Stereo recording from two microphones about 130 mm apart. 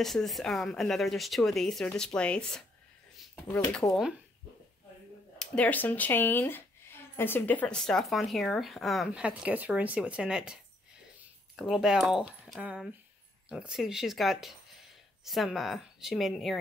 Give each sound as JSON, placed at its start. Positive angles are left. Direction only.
{"t": 0.0, "sound": "a woman's voice", "side_deg": 0}
{"t": 3.8, "sound": "speech", "side_deg": 25}
{"t": 5.4, "sound": "a woman's voice", "side_deg": 10}